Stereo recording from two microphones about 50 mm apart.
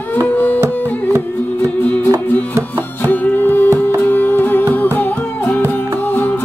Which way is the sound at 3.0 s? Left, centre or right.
Left.